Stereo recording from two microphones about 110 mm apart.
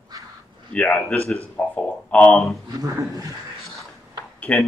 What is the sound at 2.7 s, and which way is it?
Speech, 30° right (ahead or behind).